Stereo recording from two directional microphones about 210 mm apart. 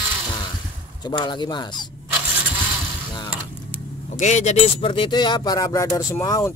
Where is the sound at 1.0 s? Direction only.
20° left (ahead or behind).